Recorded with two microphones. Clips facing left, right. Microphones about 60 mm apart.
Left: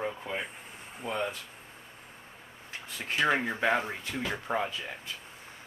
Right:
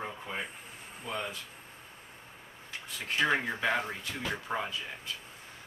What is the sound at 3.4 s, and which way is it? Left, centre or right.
Speech, left.